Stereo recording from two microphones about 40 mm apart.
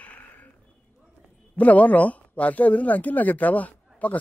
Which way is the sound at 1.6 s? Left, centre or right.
Left.